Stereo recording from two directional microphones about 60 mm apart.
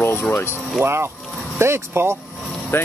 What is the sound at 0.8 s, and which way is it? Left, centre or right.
Speech, right.